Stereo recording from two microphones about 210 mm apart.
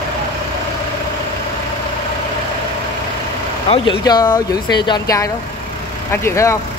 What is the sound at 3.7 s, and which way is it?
Speech, 20° left (ahead or behind).